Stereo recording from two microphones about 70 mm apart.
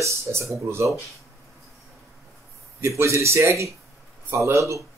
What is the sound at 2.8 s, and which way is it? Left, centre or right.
Speech, right.